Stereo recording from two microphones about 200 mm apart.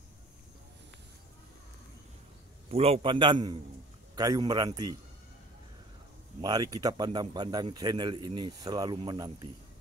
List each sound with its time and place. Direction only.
2.7 s speech: 30° right (ahead or behind)
6.4 s speech: 20° right (ahead or behind)